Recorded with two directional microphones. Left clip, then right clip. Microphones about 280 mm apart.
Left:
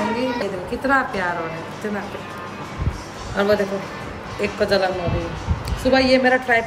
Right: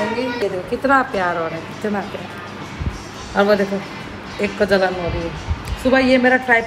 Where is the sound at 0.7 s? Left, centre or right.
Centre.